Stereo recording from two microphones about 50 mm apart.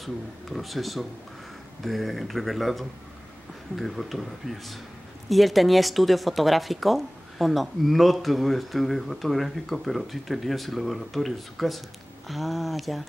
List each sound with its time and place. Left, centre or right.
0.0 s speech: centre